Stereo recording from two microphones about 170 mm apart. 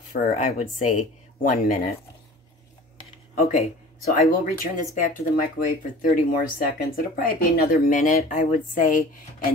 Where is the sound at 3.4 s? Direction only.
40° left (ahead or behind).